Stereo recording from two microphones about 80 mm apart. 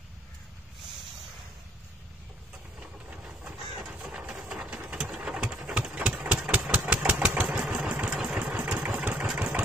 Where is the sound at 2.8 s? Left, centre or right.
Centre.